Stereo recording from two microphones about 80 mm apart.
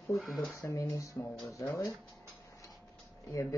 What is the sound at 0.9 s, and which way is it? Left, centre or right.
Speech, left.